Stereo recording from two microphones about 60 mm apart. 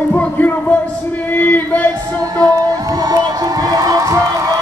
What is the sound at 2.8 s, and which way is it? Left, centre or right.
Music, right.